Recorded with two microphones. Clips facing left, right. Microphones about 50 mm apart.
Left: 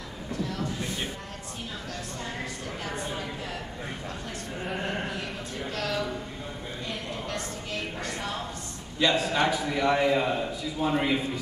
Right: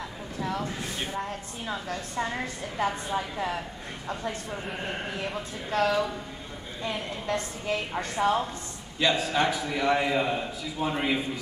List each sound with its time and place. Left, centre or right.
0.4 s a sound: centre
5.7 s a woman's voice: right
9.0 s a man's voice: centre